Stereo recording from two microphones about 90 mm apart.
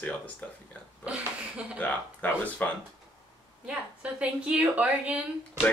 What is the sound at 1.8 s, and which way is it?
Speech, 15° left (ahead or behind).